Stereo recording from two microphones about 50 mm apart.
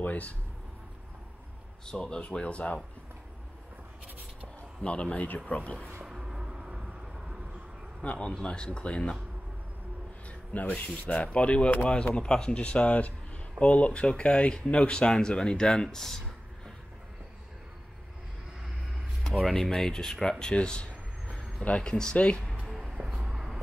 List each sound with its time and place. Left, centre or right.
0.0 s speech: left
1.9 s speech: centre
4.8 s speech: left
6.1 s vehicle: centre
8.0 s speech: left
10.2 s a sound: left
11.1 s speech: left
19.2 s speech: centre; by 22.4 s left
22.7 s a sound: centre
23.2 s vehicle: centre